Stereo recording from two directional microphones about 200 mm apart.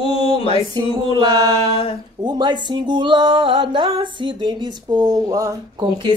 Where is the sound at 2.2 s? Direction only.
20° right (ahead or behind).